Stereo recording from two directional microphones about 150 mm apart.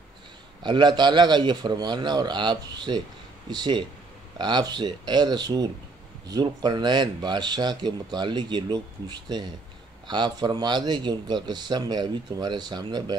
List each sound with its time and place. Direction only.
0.7 s speech: 30° right (ahead or behind)